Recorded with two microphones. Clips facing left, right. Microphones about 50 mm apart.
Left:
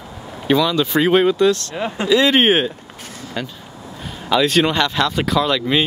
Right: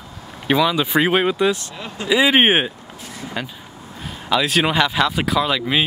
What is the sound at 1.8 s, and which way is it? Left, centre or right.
Speech, left.